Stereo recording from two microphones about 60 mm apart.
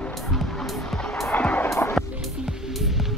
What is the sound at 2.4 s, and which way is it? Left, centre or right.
Music, centre.